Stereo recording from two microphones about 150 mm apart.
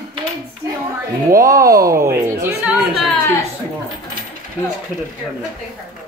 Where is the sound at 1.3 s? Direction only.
20° right (ahead or behind).